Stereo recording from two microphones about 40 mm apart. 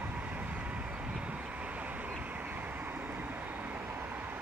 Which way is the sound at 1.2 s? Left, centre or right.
Right.